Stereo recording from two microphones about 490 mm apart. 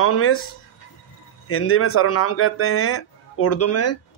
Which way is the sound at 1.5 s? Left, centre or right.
Left.